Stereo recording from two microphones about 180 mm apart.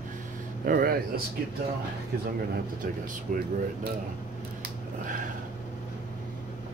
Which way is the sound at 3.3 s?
50° right (ahead or behind).